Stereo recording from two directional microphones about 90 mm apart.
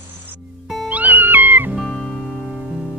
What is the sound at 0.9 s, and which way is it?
Music, 20° right (ahead or behind).